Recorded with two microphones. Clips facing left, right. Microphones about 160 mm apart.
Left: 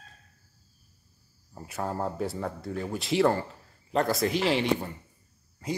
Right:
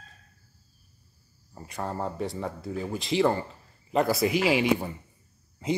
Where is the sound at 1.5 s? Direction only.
5° left (ahead or behind); by 4.9 s 10° right (ahead or behind).